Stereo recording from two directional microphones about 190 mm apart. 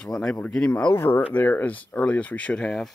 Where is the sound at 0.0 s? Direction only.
5° left (ahead or behind).